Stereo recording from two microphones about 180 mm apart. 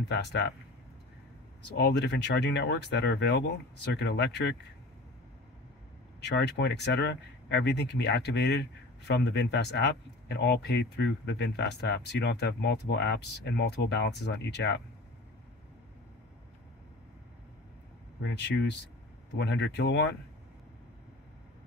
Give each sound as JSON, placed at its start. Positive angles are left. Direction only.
{"t": 0.1, "sound": "speech", "side_deg": 70}
{"t": 1.6, "sound": "speech", "side_deg": 65}
{"t": 6.2, "sound": "speech", "side_deg": 70}
{"t": 18.2, "sound": "speech", "side_deg": 75}